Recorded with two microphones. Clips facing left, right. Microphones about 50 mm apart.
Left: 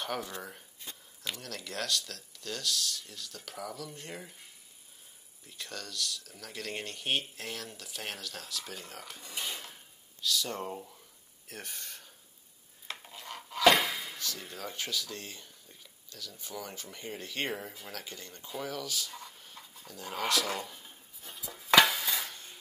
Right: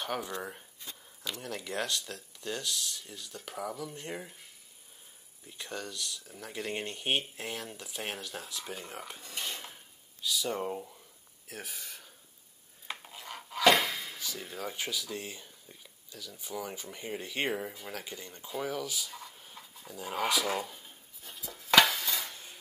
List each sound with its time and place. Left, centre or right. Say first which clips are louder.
1.4 s speech: right 6 dB; centre
5.5 s speech: right 3 dB; centre
9.2 s a sound: left 3 dB; centre
10.2 s speech: right 1 dB; centre
19.9 s a sound: right 1 dB; centre
21.7 s stir: even; centre